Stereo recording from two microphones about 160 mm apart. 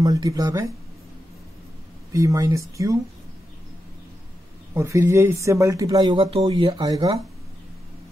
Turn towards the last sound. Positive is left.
turn(degrees=-20)  # may be behind; listen again after turning